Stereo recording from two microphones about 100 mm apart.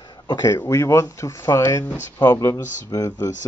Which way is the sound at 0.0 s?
50° left (ahead or behind).